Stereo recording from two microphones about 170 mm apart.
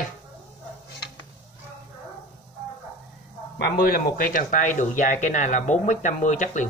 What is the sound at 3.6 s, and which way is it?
Speech, 60° left (ahead or behind).